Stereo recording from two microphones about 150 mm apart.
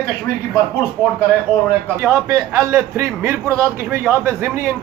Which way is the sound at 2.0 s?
20° right (ahead or behind).